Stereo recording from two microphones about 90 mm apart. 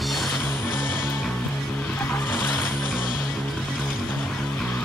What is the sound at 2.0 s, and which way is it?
Music, 25° left (ahead or behind).